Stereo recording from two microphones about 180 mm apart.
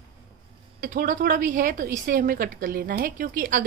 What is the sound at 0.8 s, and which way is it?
A woman's voice, 50° right (ahead or behind).